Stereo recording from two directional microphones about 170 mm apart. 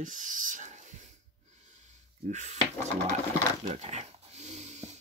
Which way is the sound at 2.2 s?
45° right (ahead or behind).